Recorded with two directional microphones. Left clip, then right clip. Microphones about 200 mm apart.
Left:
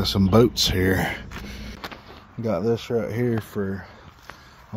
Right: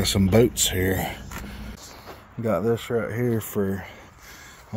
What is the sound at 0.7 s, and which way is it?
Speech, 25° left (ahead or behind).